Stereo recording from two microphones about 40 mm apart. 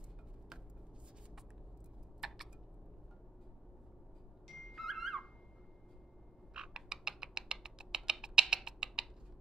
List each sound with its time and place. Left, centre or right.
2.2 s a sound: centre
4.7 s music: centre
6.5 s frog: centre
7.6 s typing: centre